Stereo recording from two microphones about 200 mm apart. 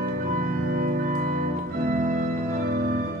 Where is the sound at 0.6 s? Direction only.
50° right (ahead or behind).